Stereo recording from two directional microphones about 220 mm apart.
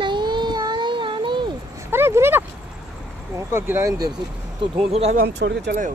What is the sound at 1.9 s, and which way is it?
Speech, 10° right (ahead or behind).